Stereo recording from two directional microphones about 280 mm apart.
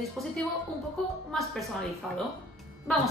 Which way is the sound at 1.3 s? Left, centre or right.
Centre.